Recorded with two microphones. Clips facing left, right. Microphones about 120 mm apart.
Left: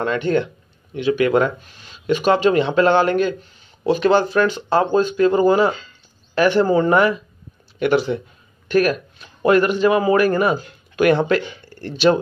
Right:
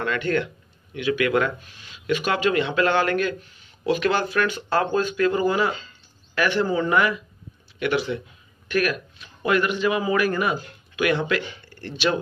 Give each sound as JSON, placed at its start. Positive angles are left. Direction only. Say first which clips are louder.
{"t": 0.0, "sound": "speech", "louder": "left 5 dB", "side_deg": 25}